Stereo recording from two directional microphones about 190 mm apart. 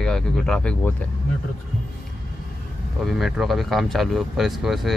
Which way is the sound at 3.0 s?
Centre (ahead or behind).